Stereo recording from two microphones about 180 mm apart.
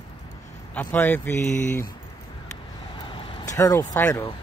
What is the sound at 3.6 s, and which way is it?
Speech, 20° left (ahead or behind).